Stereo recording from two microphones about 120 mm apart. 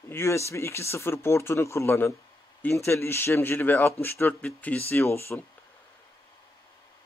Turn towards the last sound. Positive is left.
turn(degrees=20)  # may be behind; listen again after turning